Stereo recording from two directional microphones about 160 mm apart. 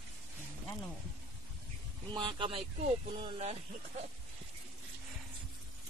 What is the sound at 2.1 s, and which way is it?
Speech, 30° right (ahead or behind).